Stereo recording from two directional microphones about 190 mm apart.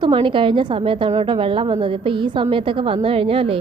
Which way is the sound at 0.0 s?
25° right (ahead or behind).